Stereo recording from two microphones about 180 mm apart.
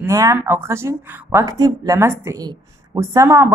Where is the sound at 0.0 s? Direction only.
20° right (ahead or behind).